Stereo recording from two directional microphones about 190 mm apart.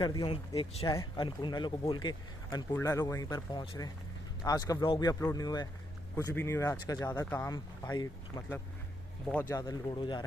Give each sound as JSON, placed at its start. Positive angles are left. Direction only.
{"t": 0.0, "sound": "speech", "side_deg": 25}
{"t": 9.6, "sound": "speech", "side_deg": 20}